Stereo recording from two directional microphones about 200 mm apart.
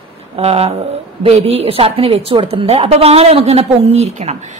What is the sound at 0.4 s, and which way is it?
A woman's voice, 30° right (ahead or behind).